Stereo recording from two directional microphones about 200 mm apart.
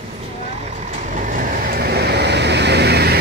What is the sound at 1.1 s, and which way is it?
Vehicle, 40° right (ahead or behind).